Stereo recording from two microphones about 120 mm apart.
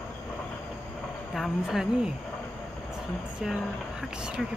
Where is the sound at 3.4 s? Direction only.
5° right (ahead or behind).